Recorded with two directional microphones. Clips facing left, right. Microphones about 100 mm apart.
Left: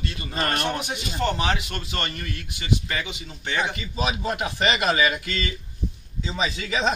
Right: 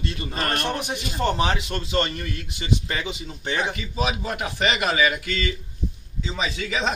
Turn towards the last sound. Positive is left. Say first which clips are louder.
# left 1 dB
turn(degrees=0)  # may be behind; listen again after turning